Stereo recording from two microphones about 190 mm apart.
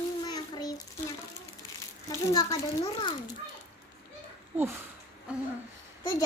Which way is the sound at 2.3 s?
20° left (ahead or behind).